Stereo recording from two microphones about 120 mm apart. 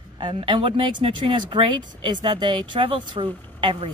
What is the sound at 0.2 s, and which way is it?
A woman's voice, 45° right (ahead or behind).